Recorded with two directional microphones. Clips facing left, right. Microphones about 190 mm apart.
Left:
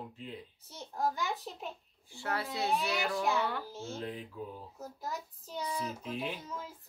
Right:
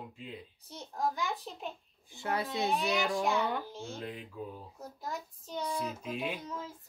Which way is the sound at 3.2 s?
Centre (ahead or behind).